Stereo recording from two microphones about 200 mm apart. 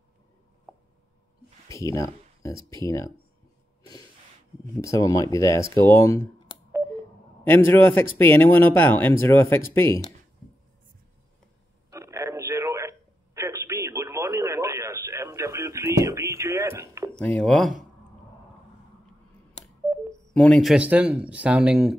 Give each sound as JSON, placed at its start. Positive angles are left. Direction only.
{"t": 1.7, "sound": "speech", "side_deg": 15}
{"t": 4.8, "sound": "a man's voice", "side_deg": 15}
{"t": 7.4, "sound": "a man's voice", "side_deg": 10}
{"t": 11.9, "sound": "telephone", "side_deg": -15}
{"t": 17.1, "sound": "speech", "side_deg": 5}
{"t": 20.3, "sound": "speech", "side_deg": 5}